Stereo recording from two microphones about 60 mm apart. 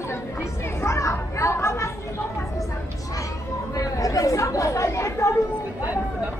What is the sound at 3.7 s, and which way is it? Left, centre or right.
Chatter, left.